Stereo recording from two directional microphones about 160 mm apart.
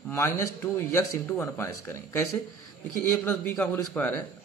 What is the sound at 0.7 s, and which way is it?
A man's voice, 15° left (ahead or behind).